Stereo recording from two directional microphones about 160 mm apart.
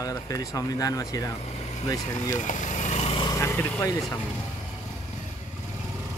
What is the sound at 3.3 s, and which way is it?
Vehicle, 15° left (ahead or behind).